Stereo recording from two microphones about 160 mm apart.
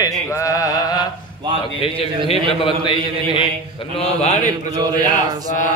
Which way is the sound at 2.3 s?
35° left (ahead or behind).